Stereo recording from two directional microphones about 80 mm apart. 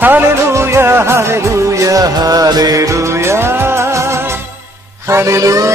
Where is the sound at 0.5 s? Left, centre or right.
Right.